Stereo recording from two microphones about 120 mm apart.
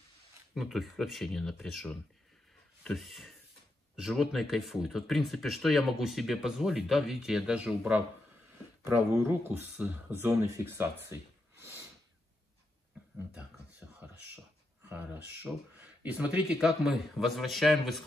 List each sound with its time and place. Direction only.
0.6 s speech: centre (ahead or behind)
8.8 s speech: 20° right (ahead or behind)
13.3 s speech: 10° right (ahead or behind)